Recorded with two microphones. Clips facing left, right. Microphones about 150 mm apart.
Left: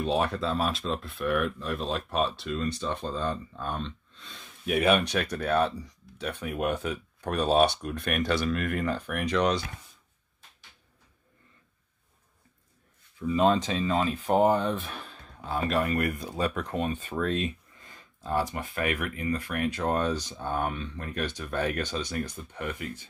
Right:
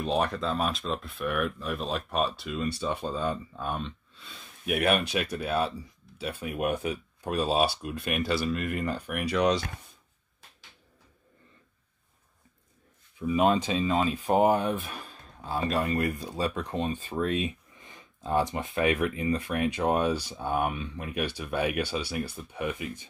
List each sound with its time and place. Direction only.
0.0 s speech: centre (ahead or behind)
13.2 s speech: 10° right (ahead or behind)
15.0 s a sound: 35° right (ahead or behind)
15.6 s speech: 25° right (ahead or behind)
17.1 s speech: 15° right (ahead or behind)